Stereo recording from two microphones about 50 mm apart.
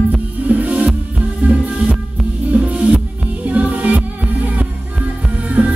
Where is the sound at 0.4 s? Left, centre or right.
Right.